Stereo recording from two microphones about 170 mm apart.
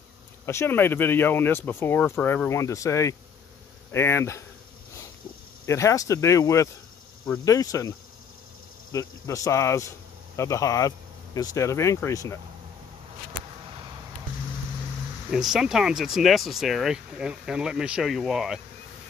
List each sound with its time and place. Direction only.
0.5 s speech: 15° left (ahead or behind)
5.7 s speech: 15° left (ahead or behind)
8.9 s speech: 20° left (ahead or behind)
15.3 s speech: 5° right (ahead or behind)